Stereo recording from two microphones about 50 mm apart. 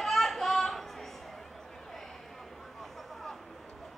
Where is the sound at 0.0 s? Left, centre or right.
Centre.